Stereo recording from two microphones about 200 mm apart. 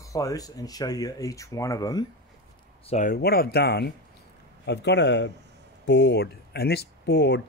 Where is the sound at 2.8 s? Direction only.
30° left (ahead or behind).